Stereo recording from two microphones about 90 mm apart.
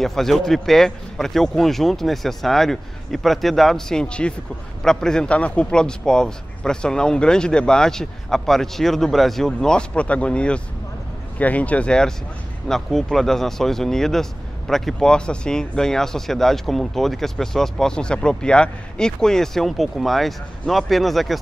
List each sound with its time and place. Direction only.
0.0 s a man's voice: 5° left (ahead or behind)